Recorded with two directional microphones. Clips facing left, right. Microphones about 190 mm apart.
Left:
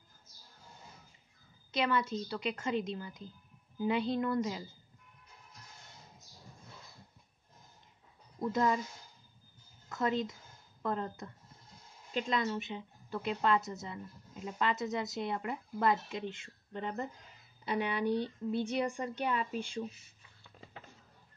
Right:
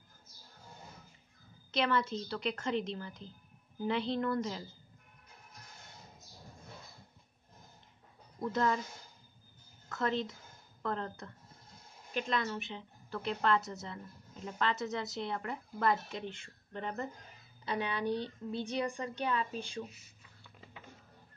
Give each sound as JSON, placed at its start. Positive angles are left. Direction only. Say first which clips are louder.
{"t": 1.8, "sound": "speech", "louder": "even", "side_deg": 10}
{"t": 8.4, "sound": "speech", "louder": "left 1 dB", "side_deg": 15}
{"t": 9.8, "sound": "a woman's voice", "louder": "left 1 dB", "side_deg": 15}
{"t": 18.2, "sound": "speech", "louder": "left 4 dB", "side_deg": -20}
{"t": 18.8, "sound": "speech", "louder": "left 1 dB", "side_deg": 15}